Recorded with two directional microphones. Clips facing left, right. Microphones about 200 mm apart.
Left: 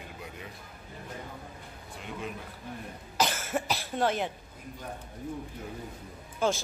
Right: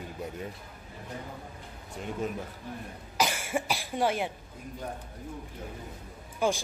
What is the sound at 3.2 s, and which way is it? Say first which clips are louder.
Cough: even; 10° right (ahead or behind).